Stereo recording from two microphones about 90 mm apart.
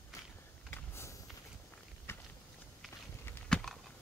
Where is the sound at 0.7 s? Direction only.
30° left (ahead or behind).